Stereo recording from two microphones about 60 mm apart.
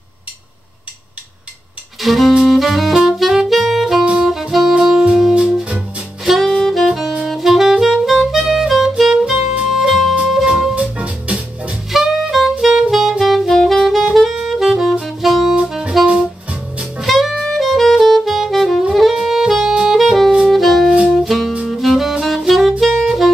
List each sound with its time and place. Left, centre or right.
2.0 s saxophone: centre
6.2 s saxophone: centre
9.7 s music: centre
10.8 s music: centre
11.9 s saxophone: centre
16.1 s saxophone: centre
17.0 s saxophone: centre
20.4 s music: centre
22.4 s saxophone: centre